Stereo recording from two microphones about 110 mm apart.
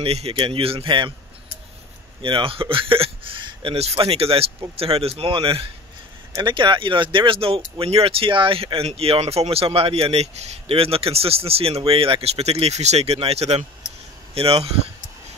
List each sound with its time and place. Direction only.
0.0 s speech: 60° right (ahead or behind)
2.2 s speech: 50° right (ahead or behind)
3.7 s speech: 60° right (ahead or behind)
14.3 s speech: 60° right (ahead or behind)